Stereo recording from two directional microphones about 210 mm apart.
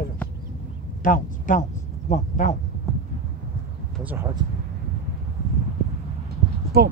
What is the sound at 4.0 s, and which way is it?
Speech, 10° right (ahead or behind).